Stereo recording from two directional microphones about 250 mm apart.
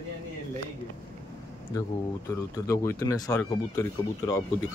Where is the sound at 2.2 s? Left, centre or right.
Centre.